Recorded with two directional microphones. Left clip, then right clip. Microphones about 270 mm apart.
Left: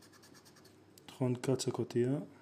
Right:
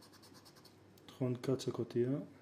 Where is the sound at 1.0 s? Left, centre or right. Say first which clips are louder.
Left 3 dB; centre.